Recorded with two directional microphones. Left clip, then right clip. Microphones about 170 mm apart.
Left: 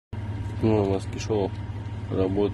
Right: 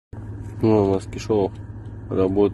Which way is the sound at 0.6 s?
20° right (ahead or behind).